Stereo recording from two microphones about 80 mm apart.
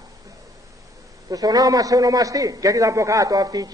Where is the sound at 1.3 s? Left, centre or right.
Right.